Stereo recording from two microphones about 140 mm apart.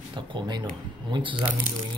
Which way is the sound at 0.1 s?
35° right (ahead or behind).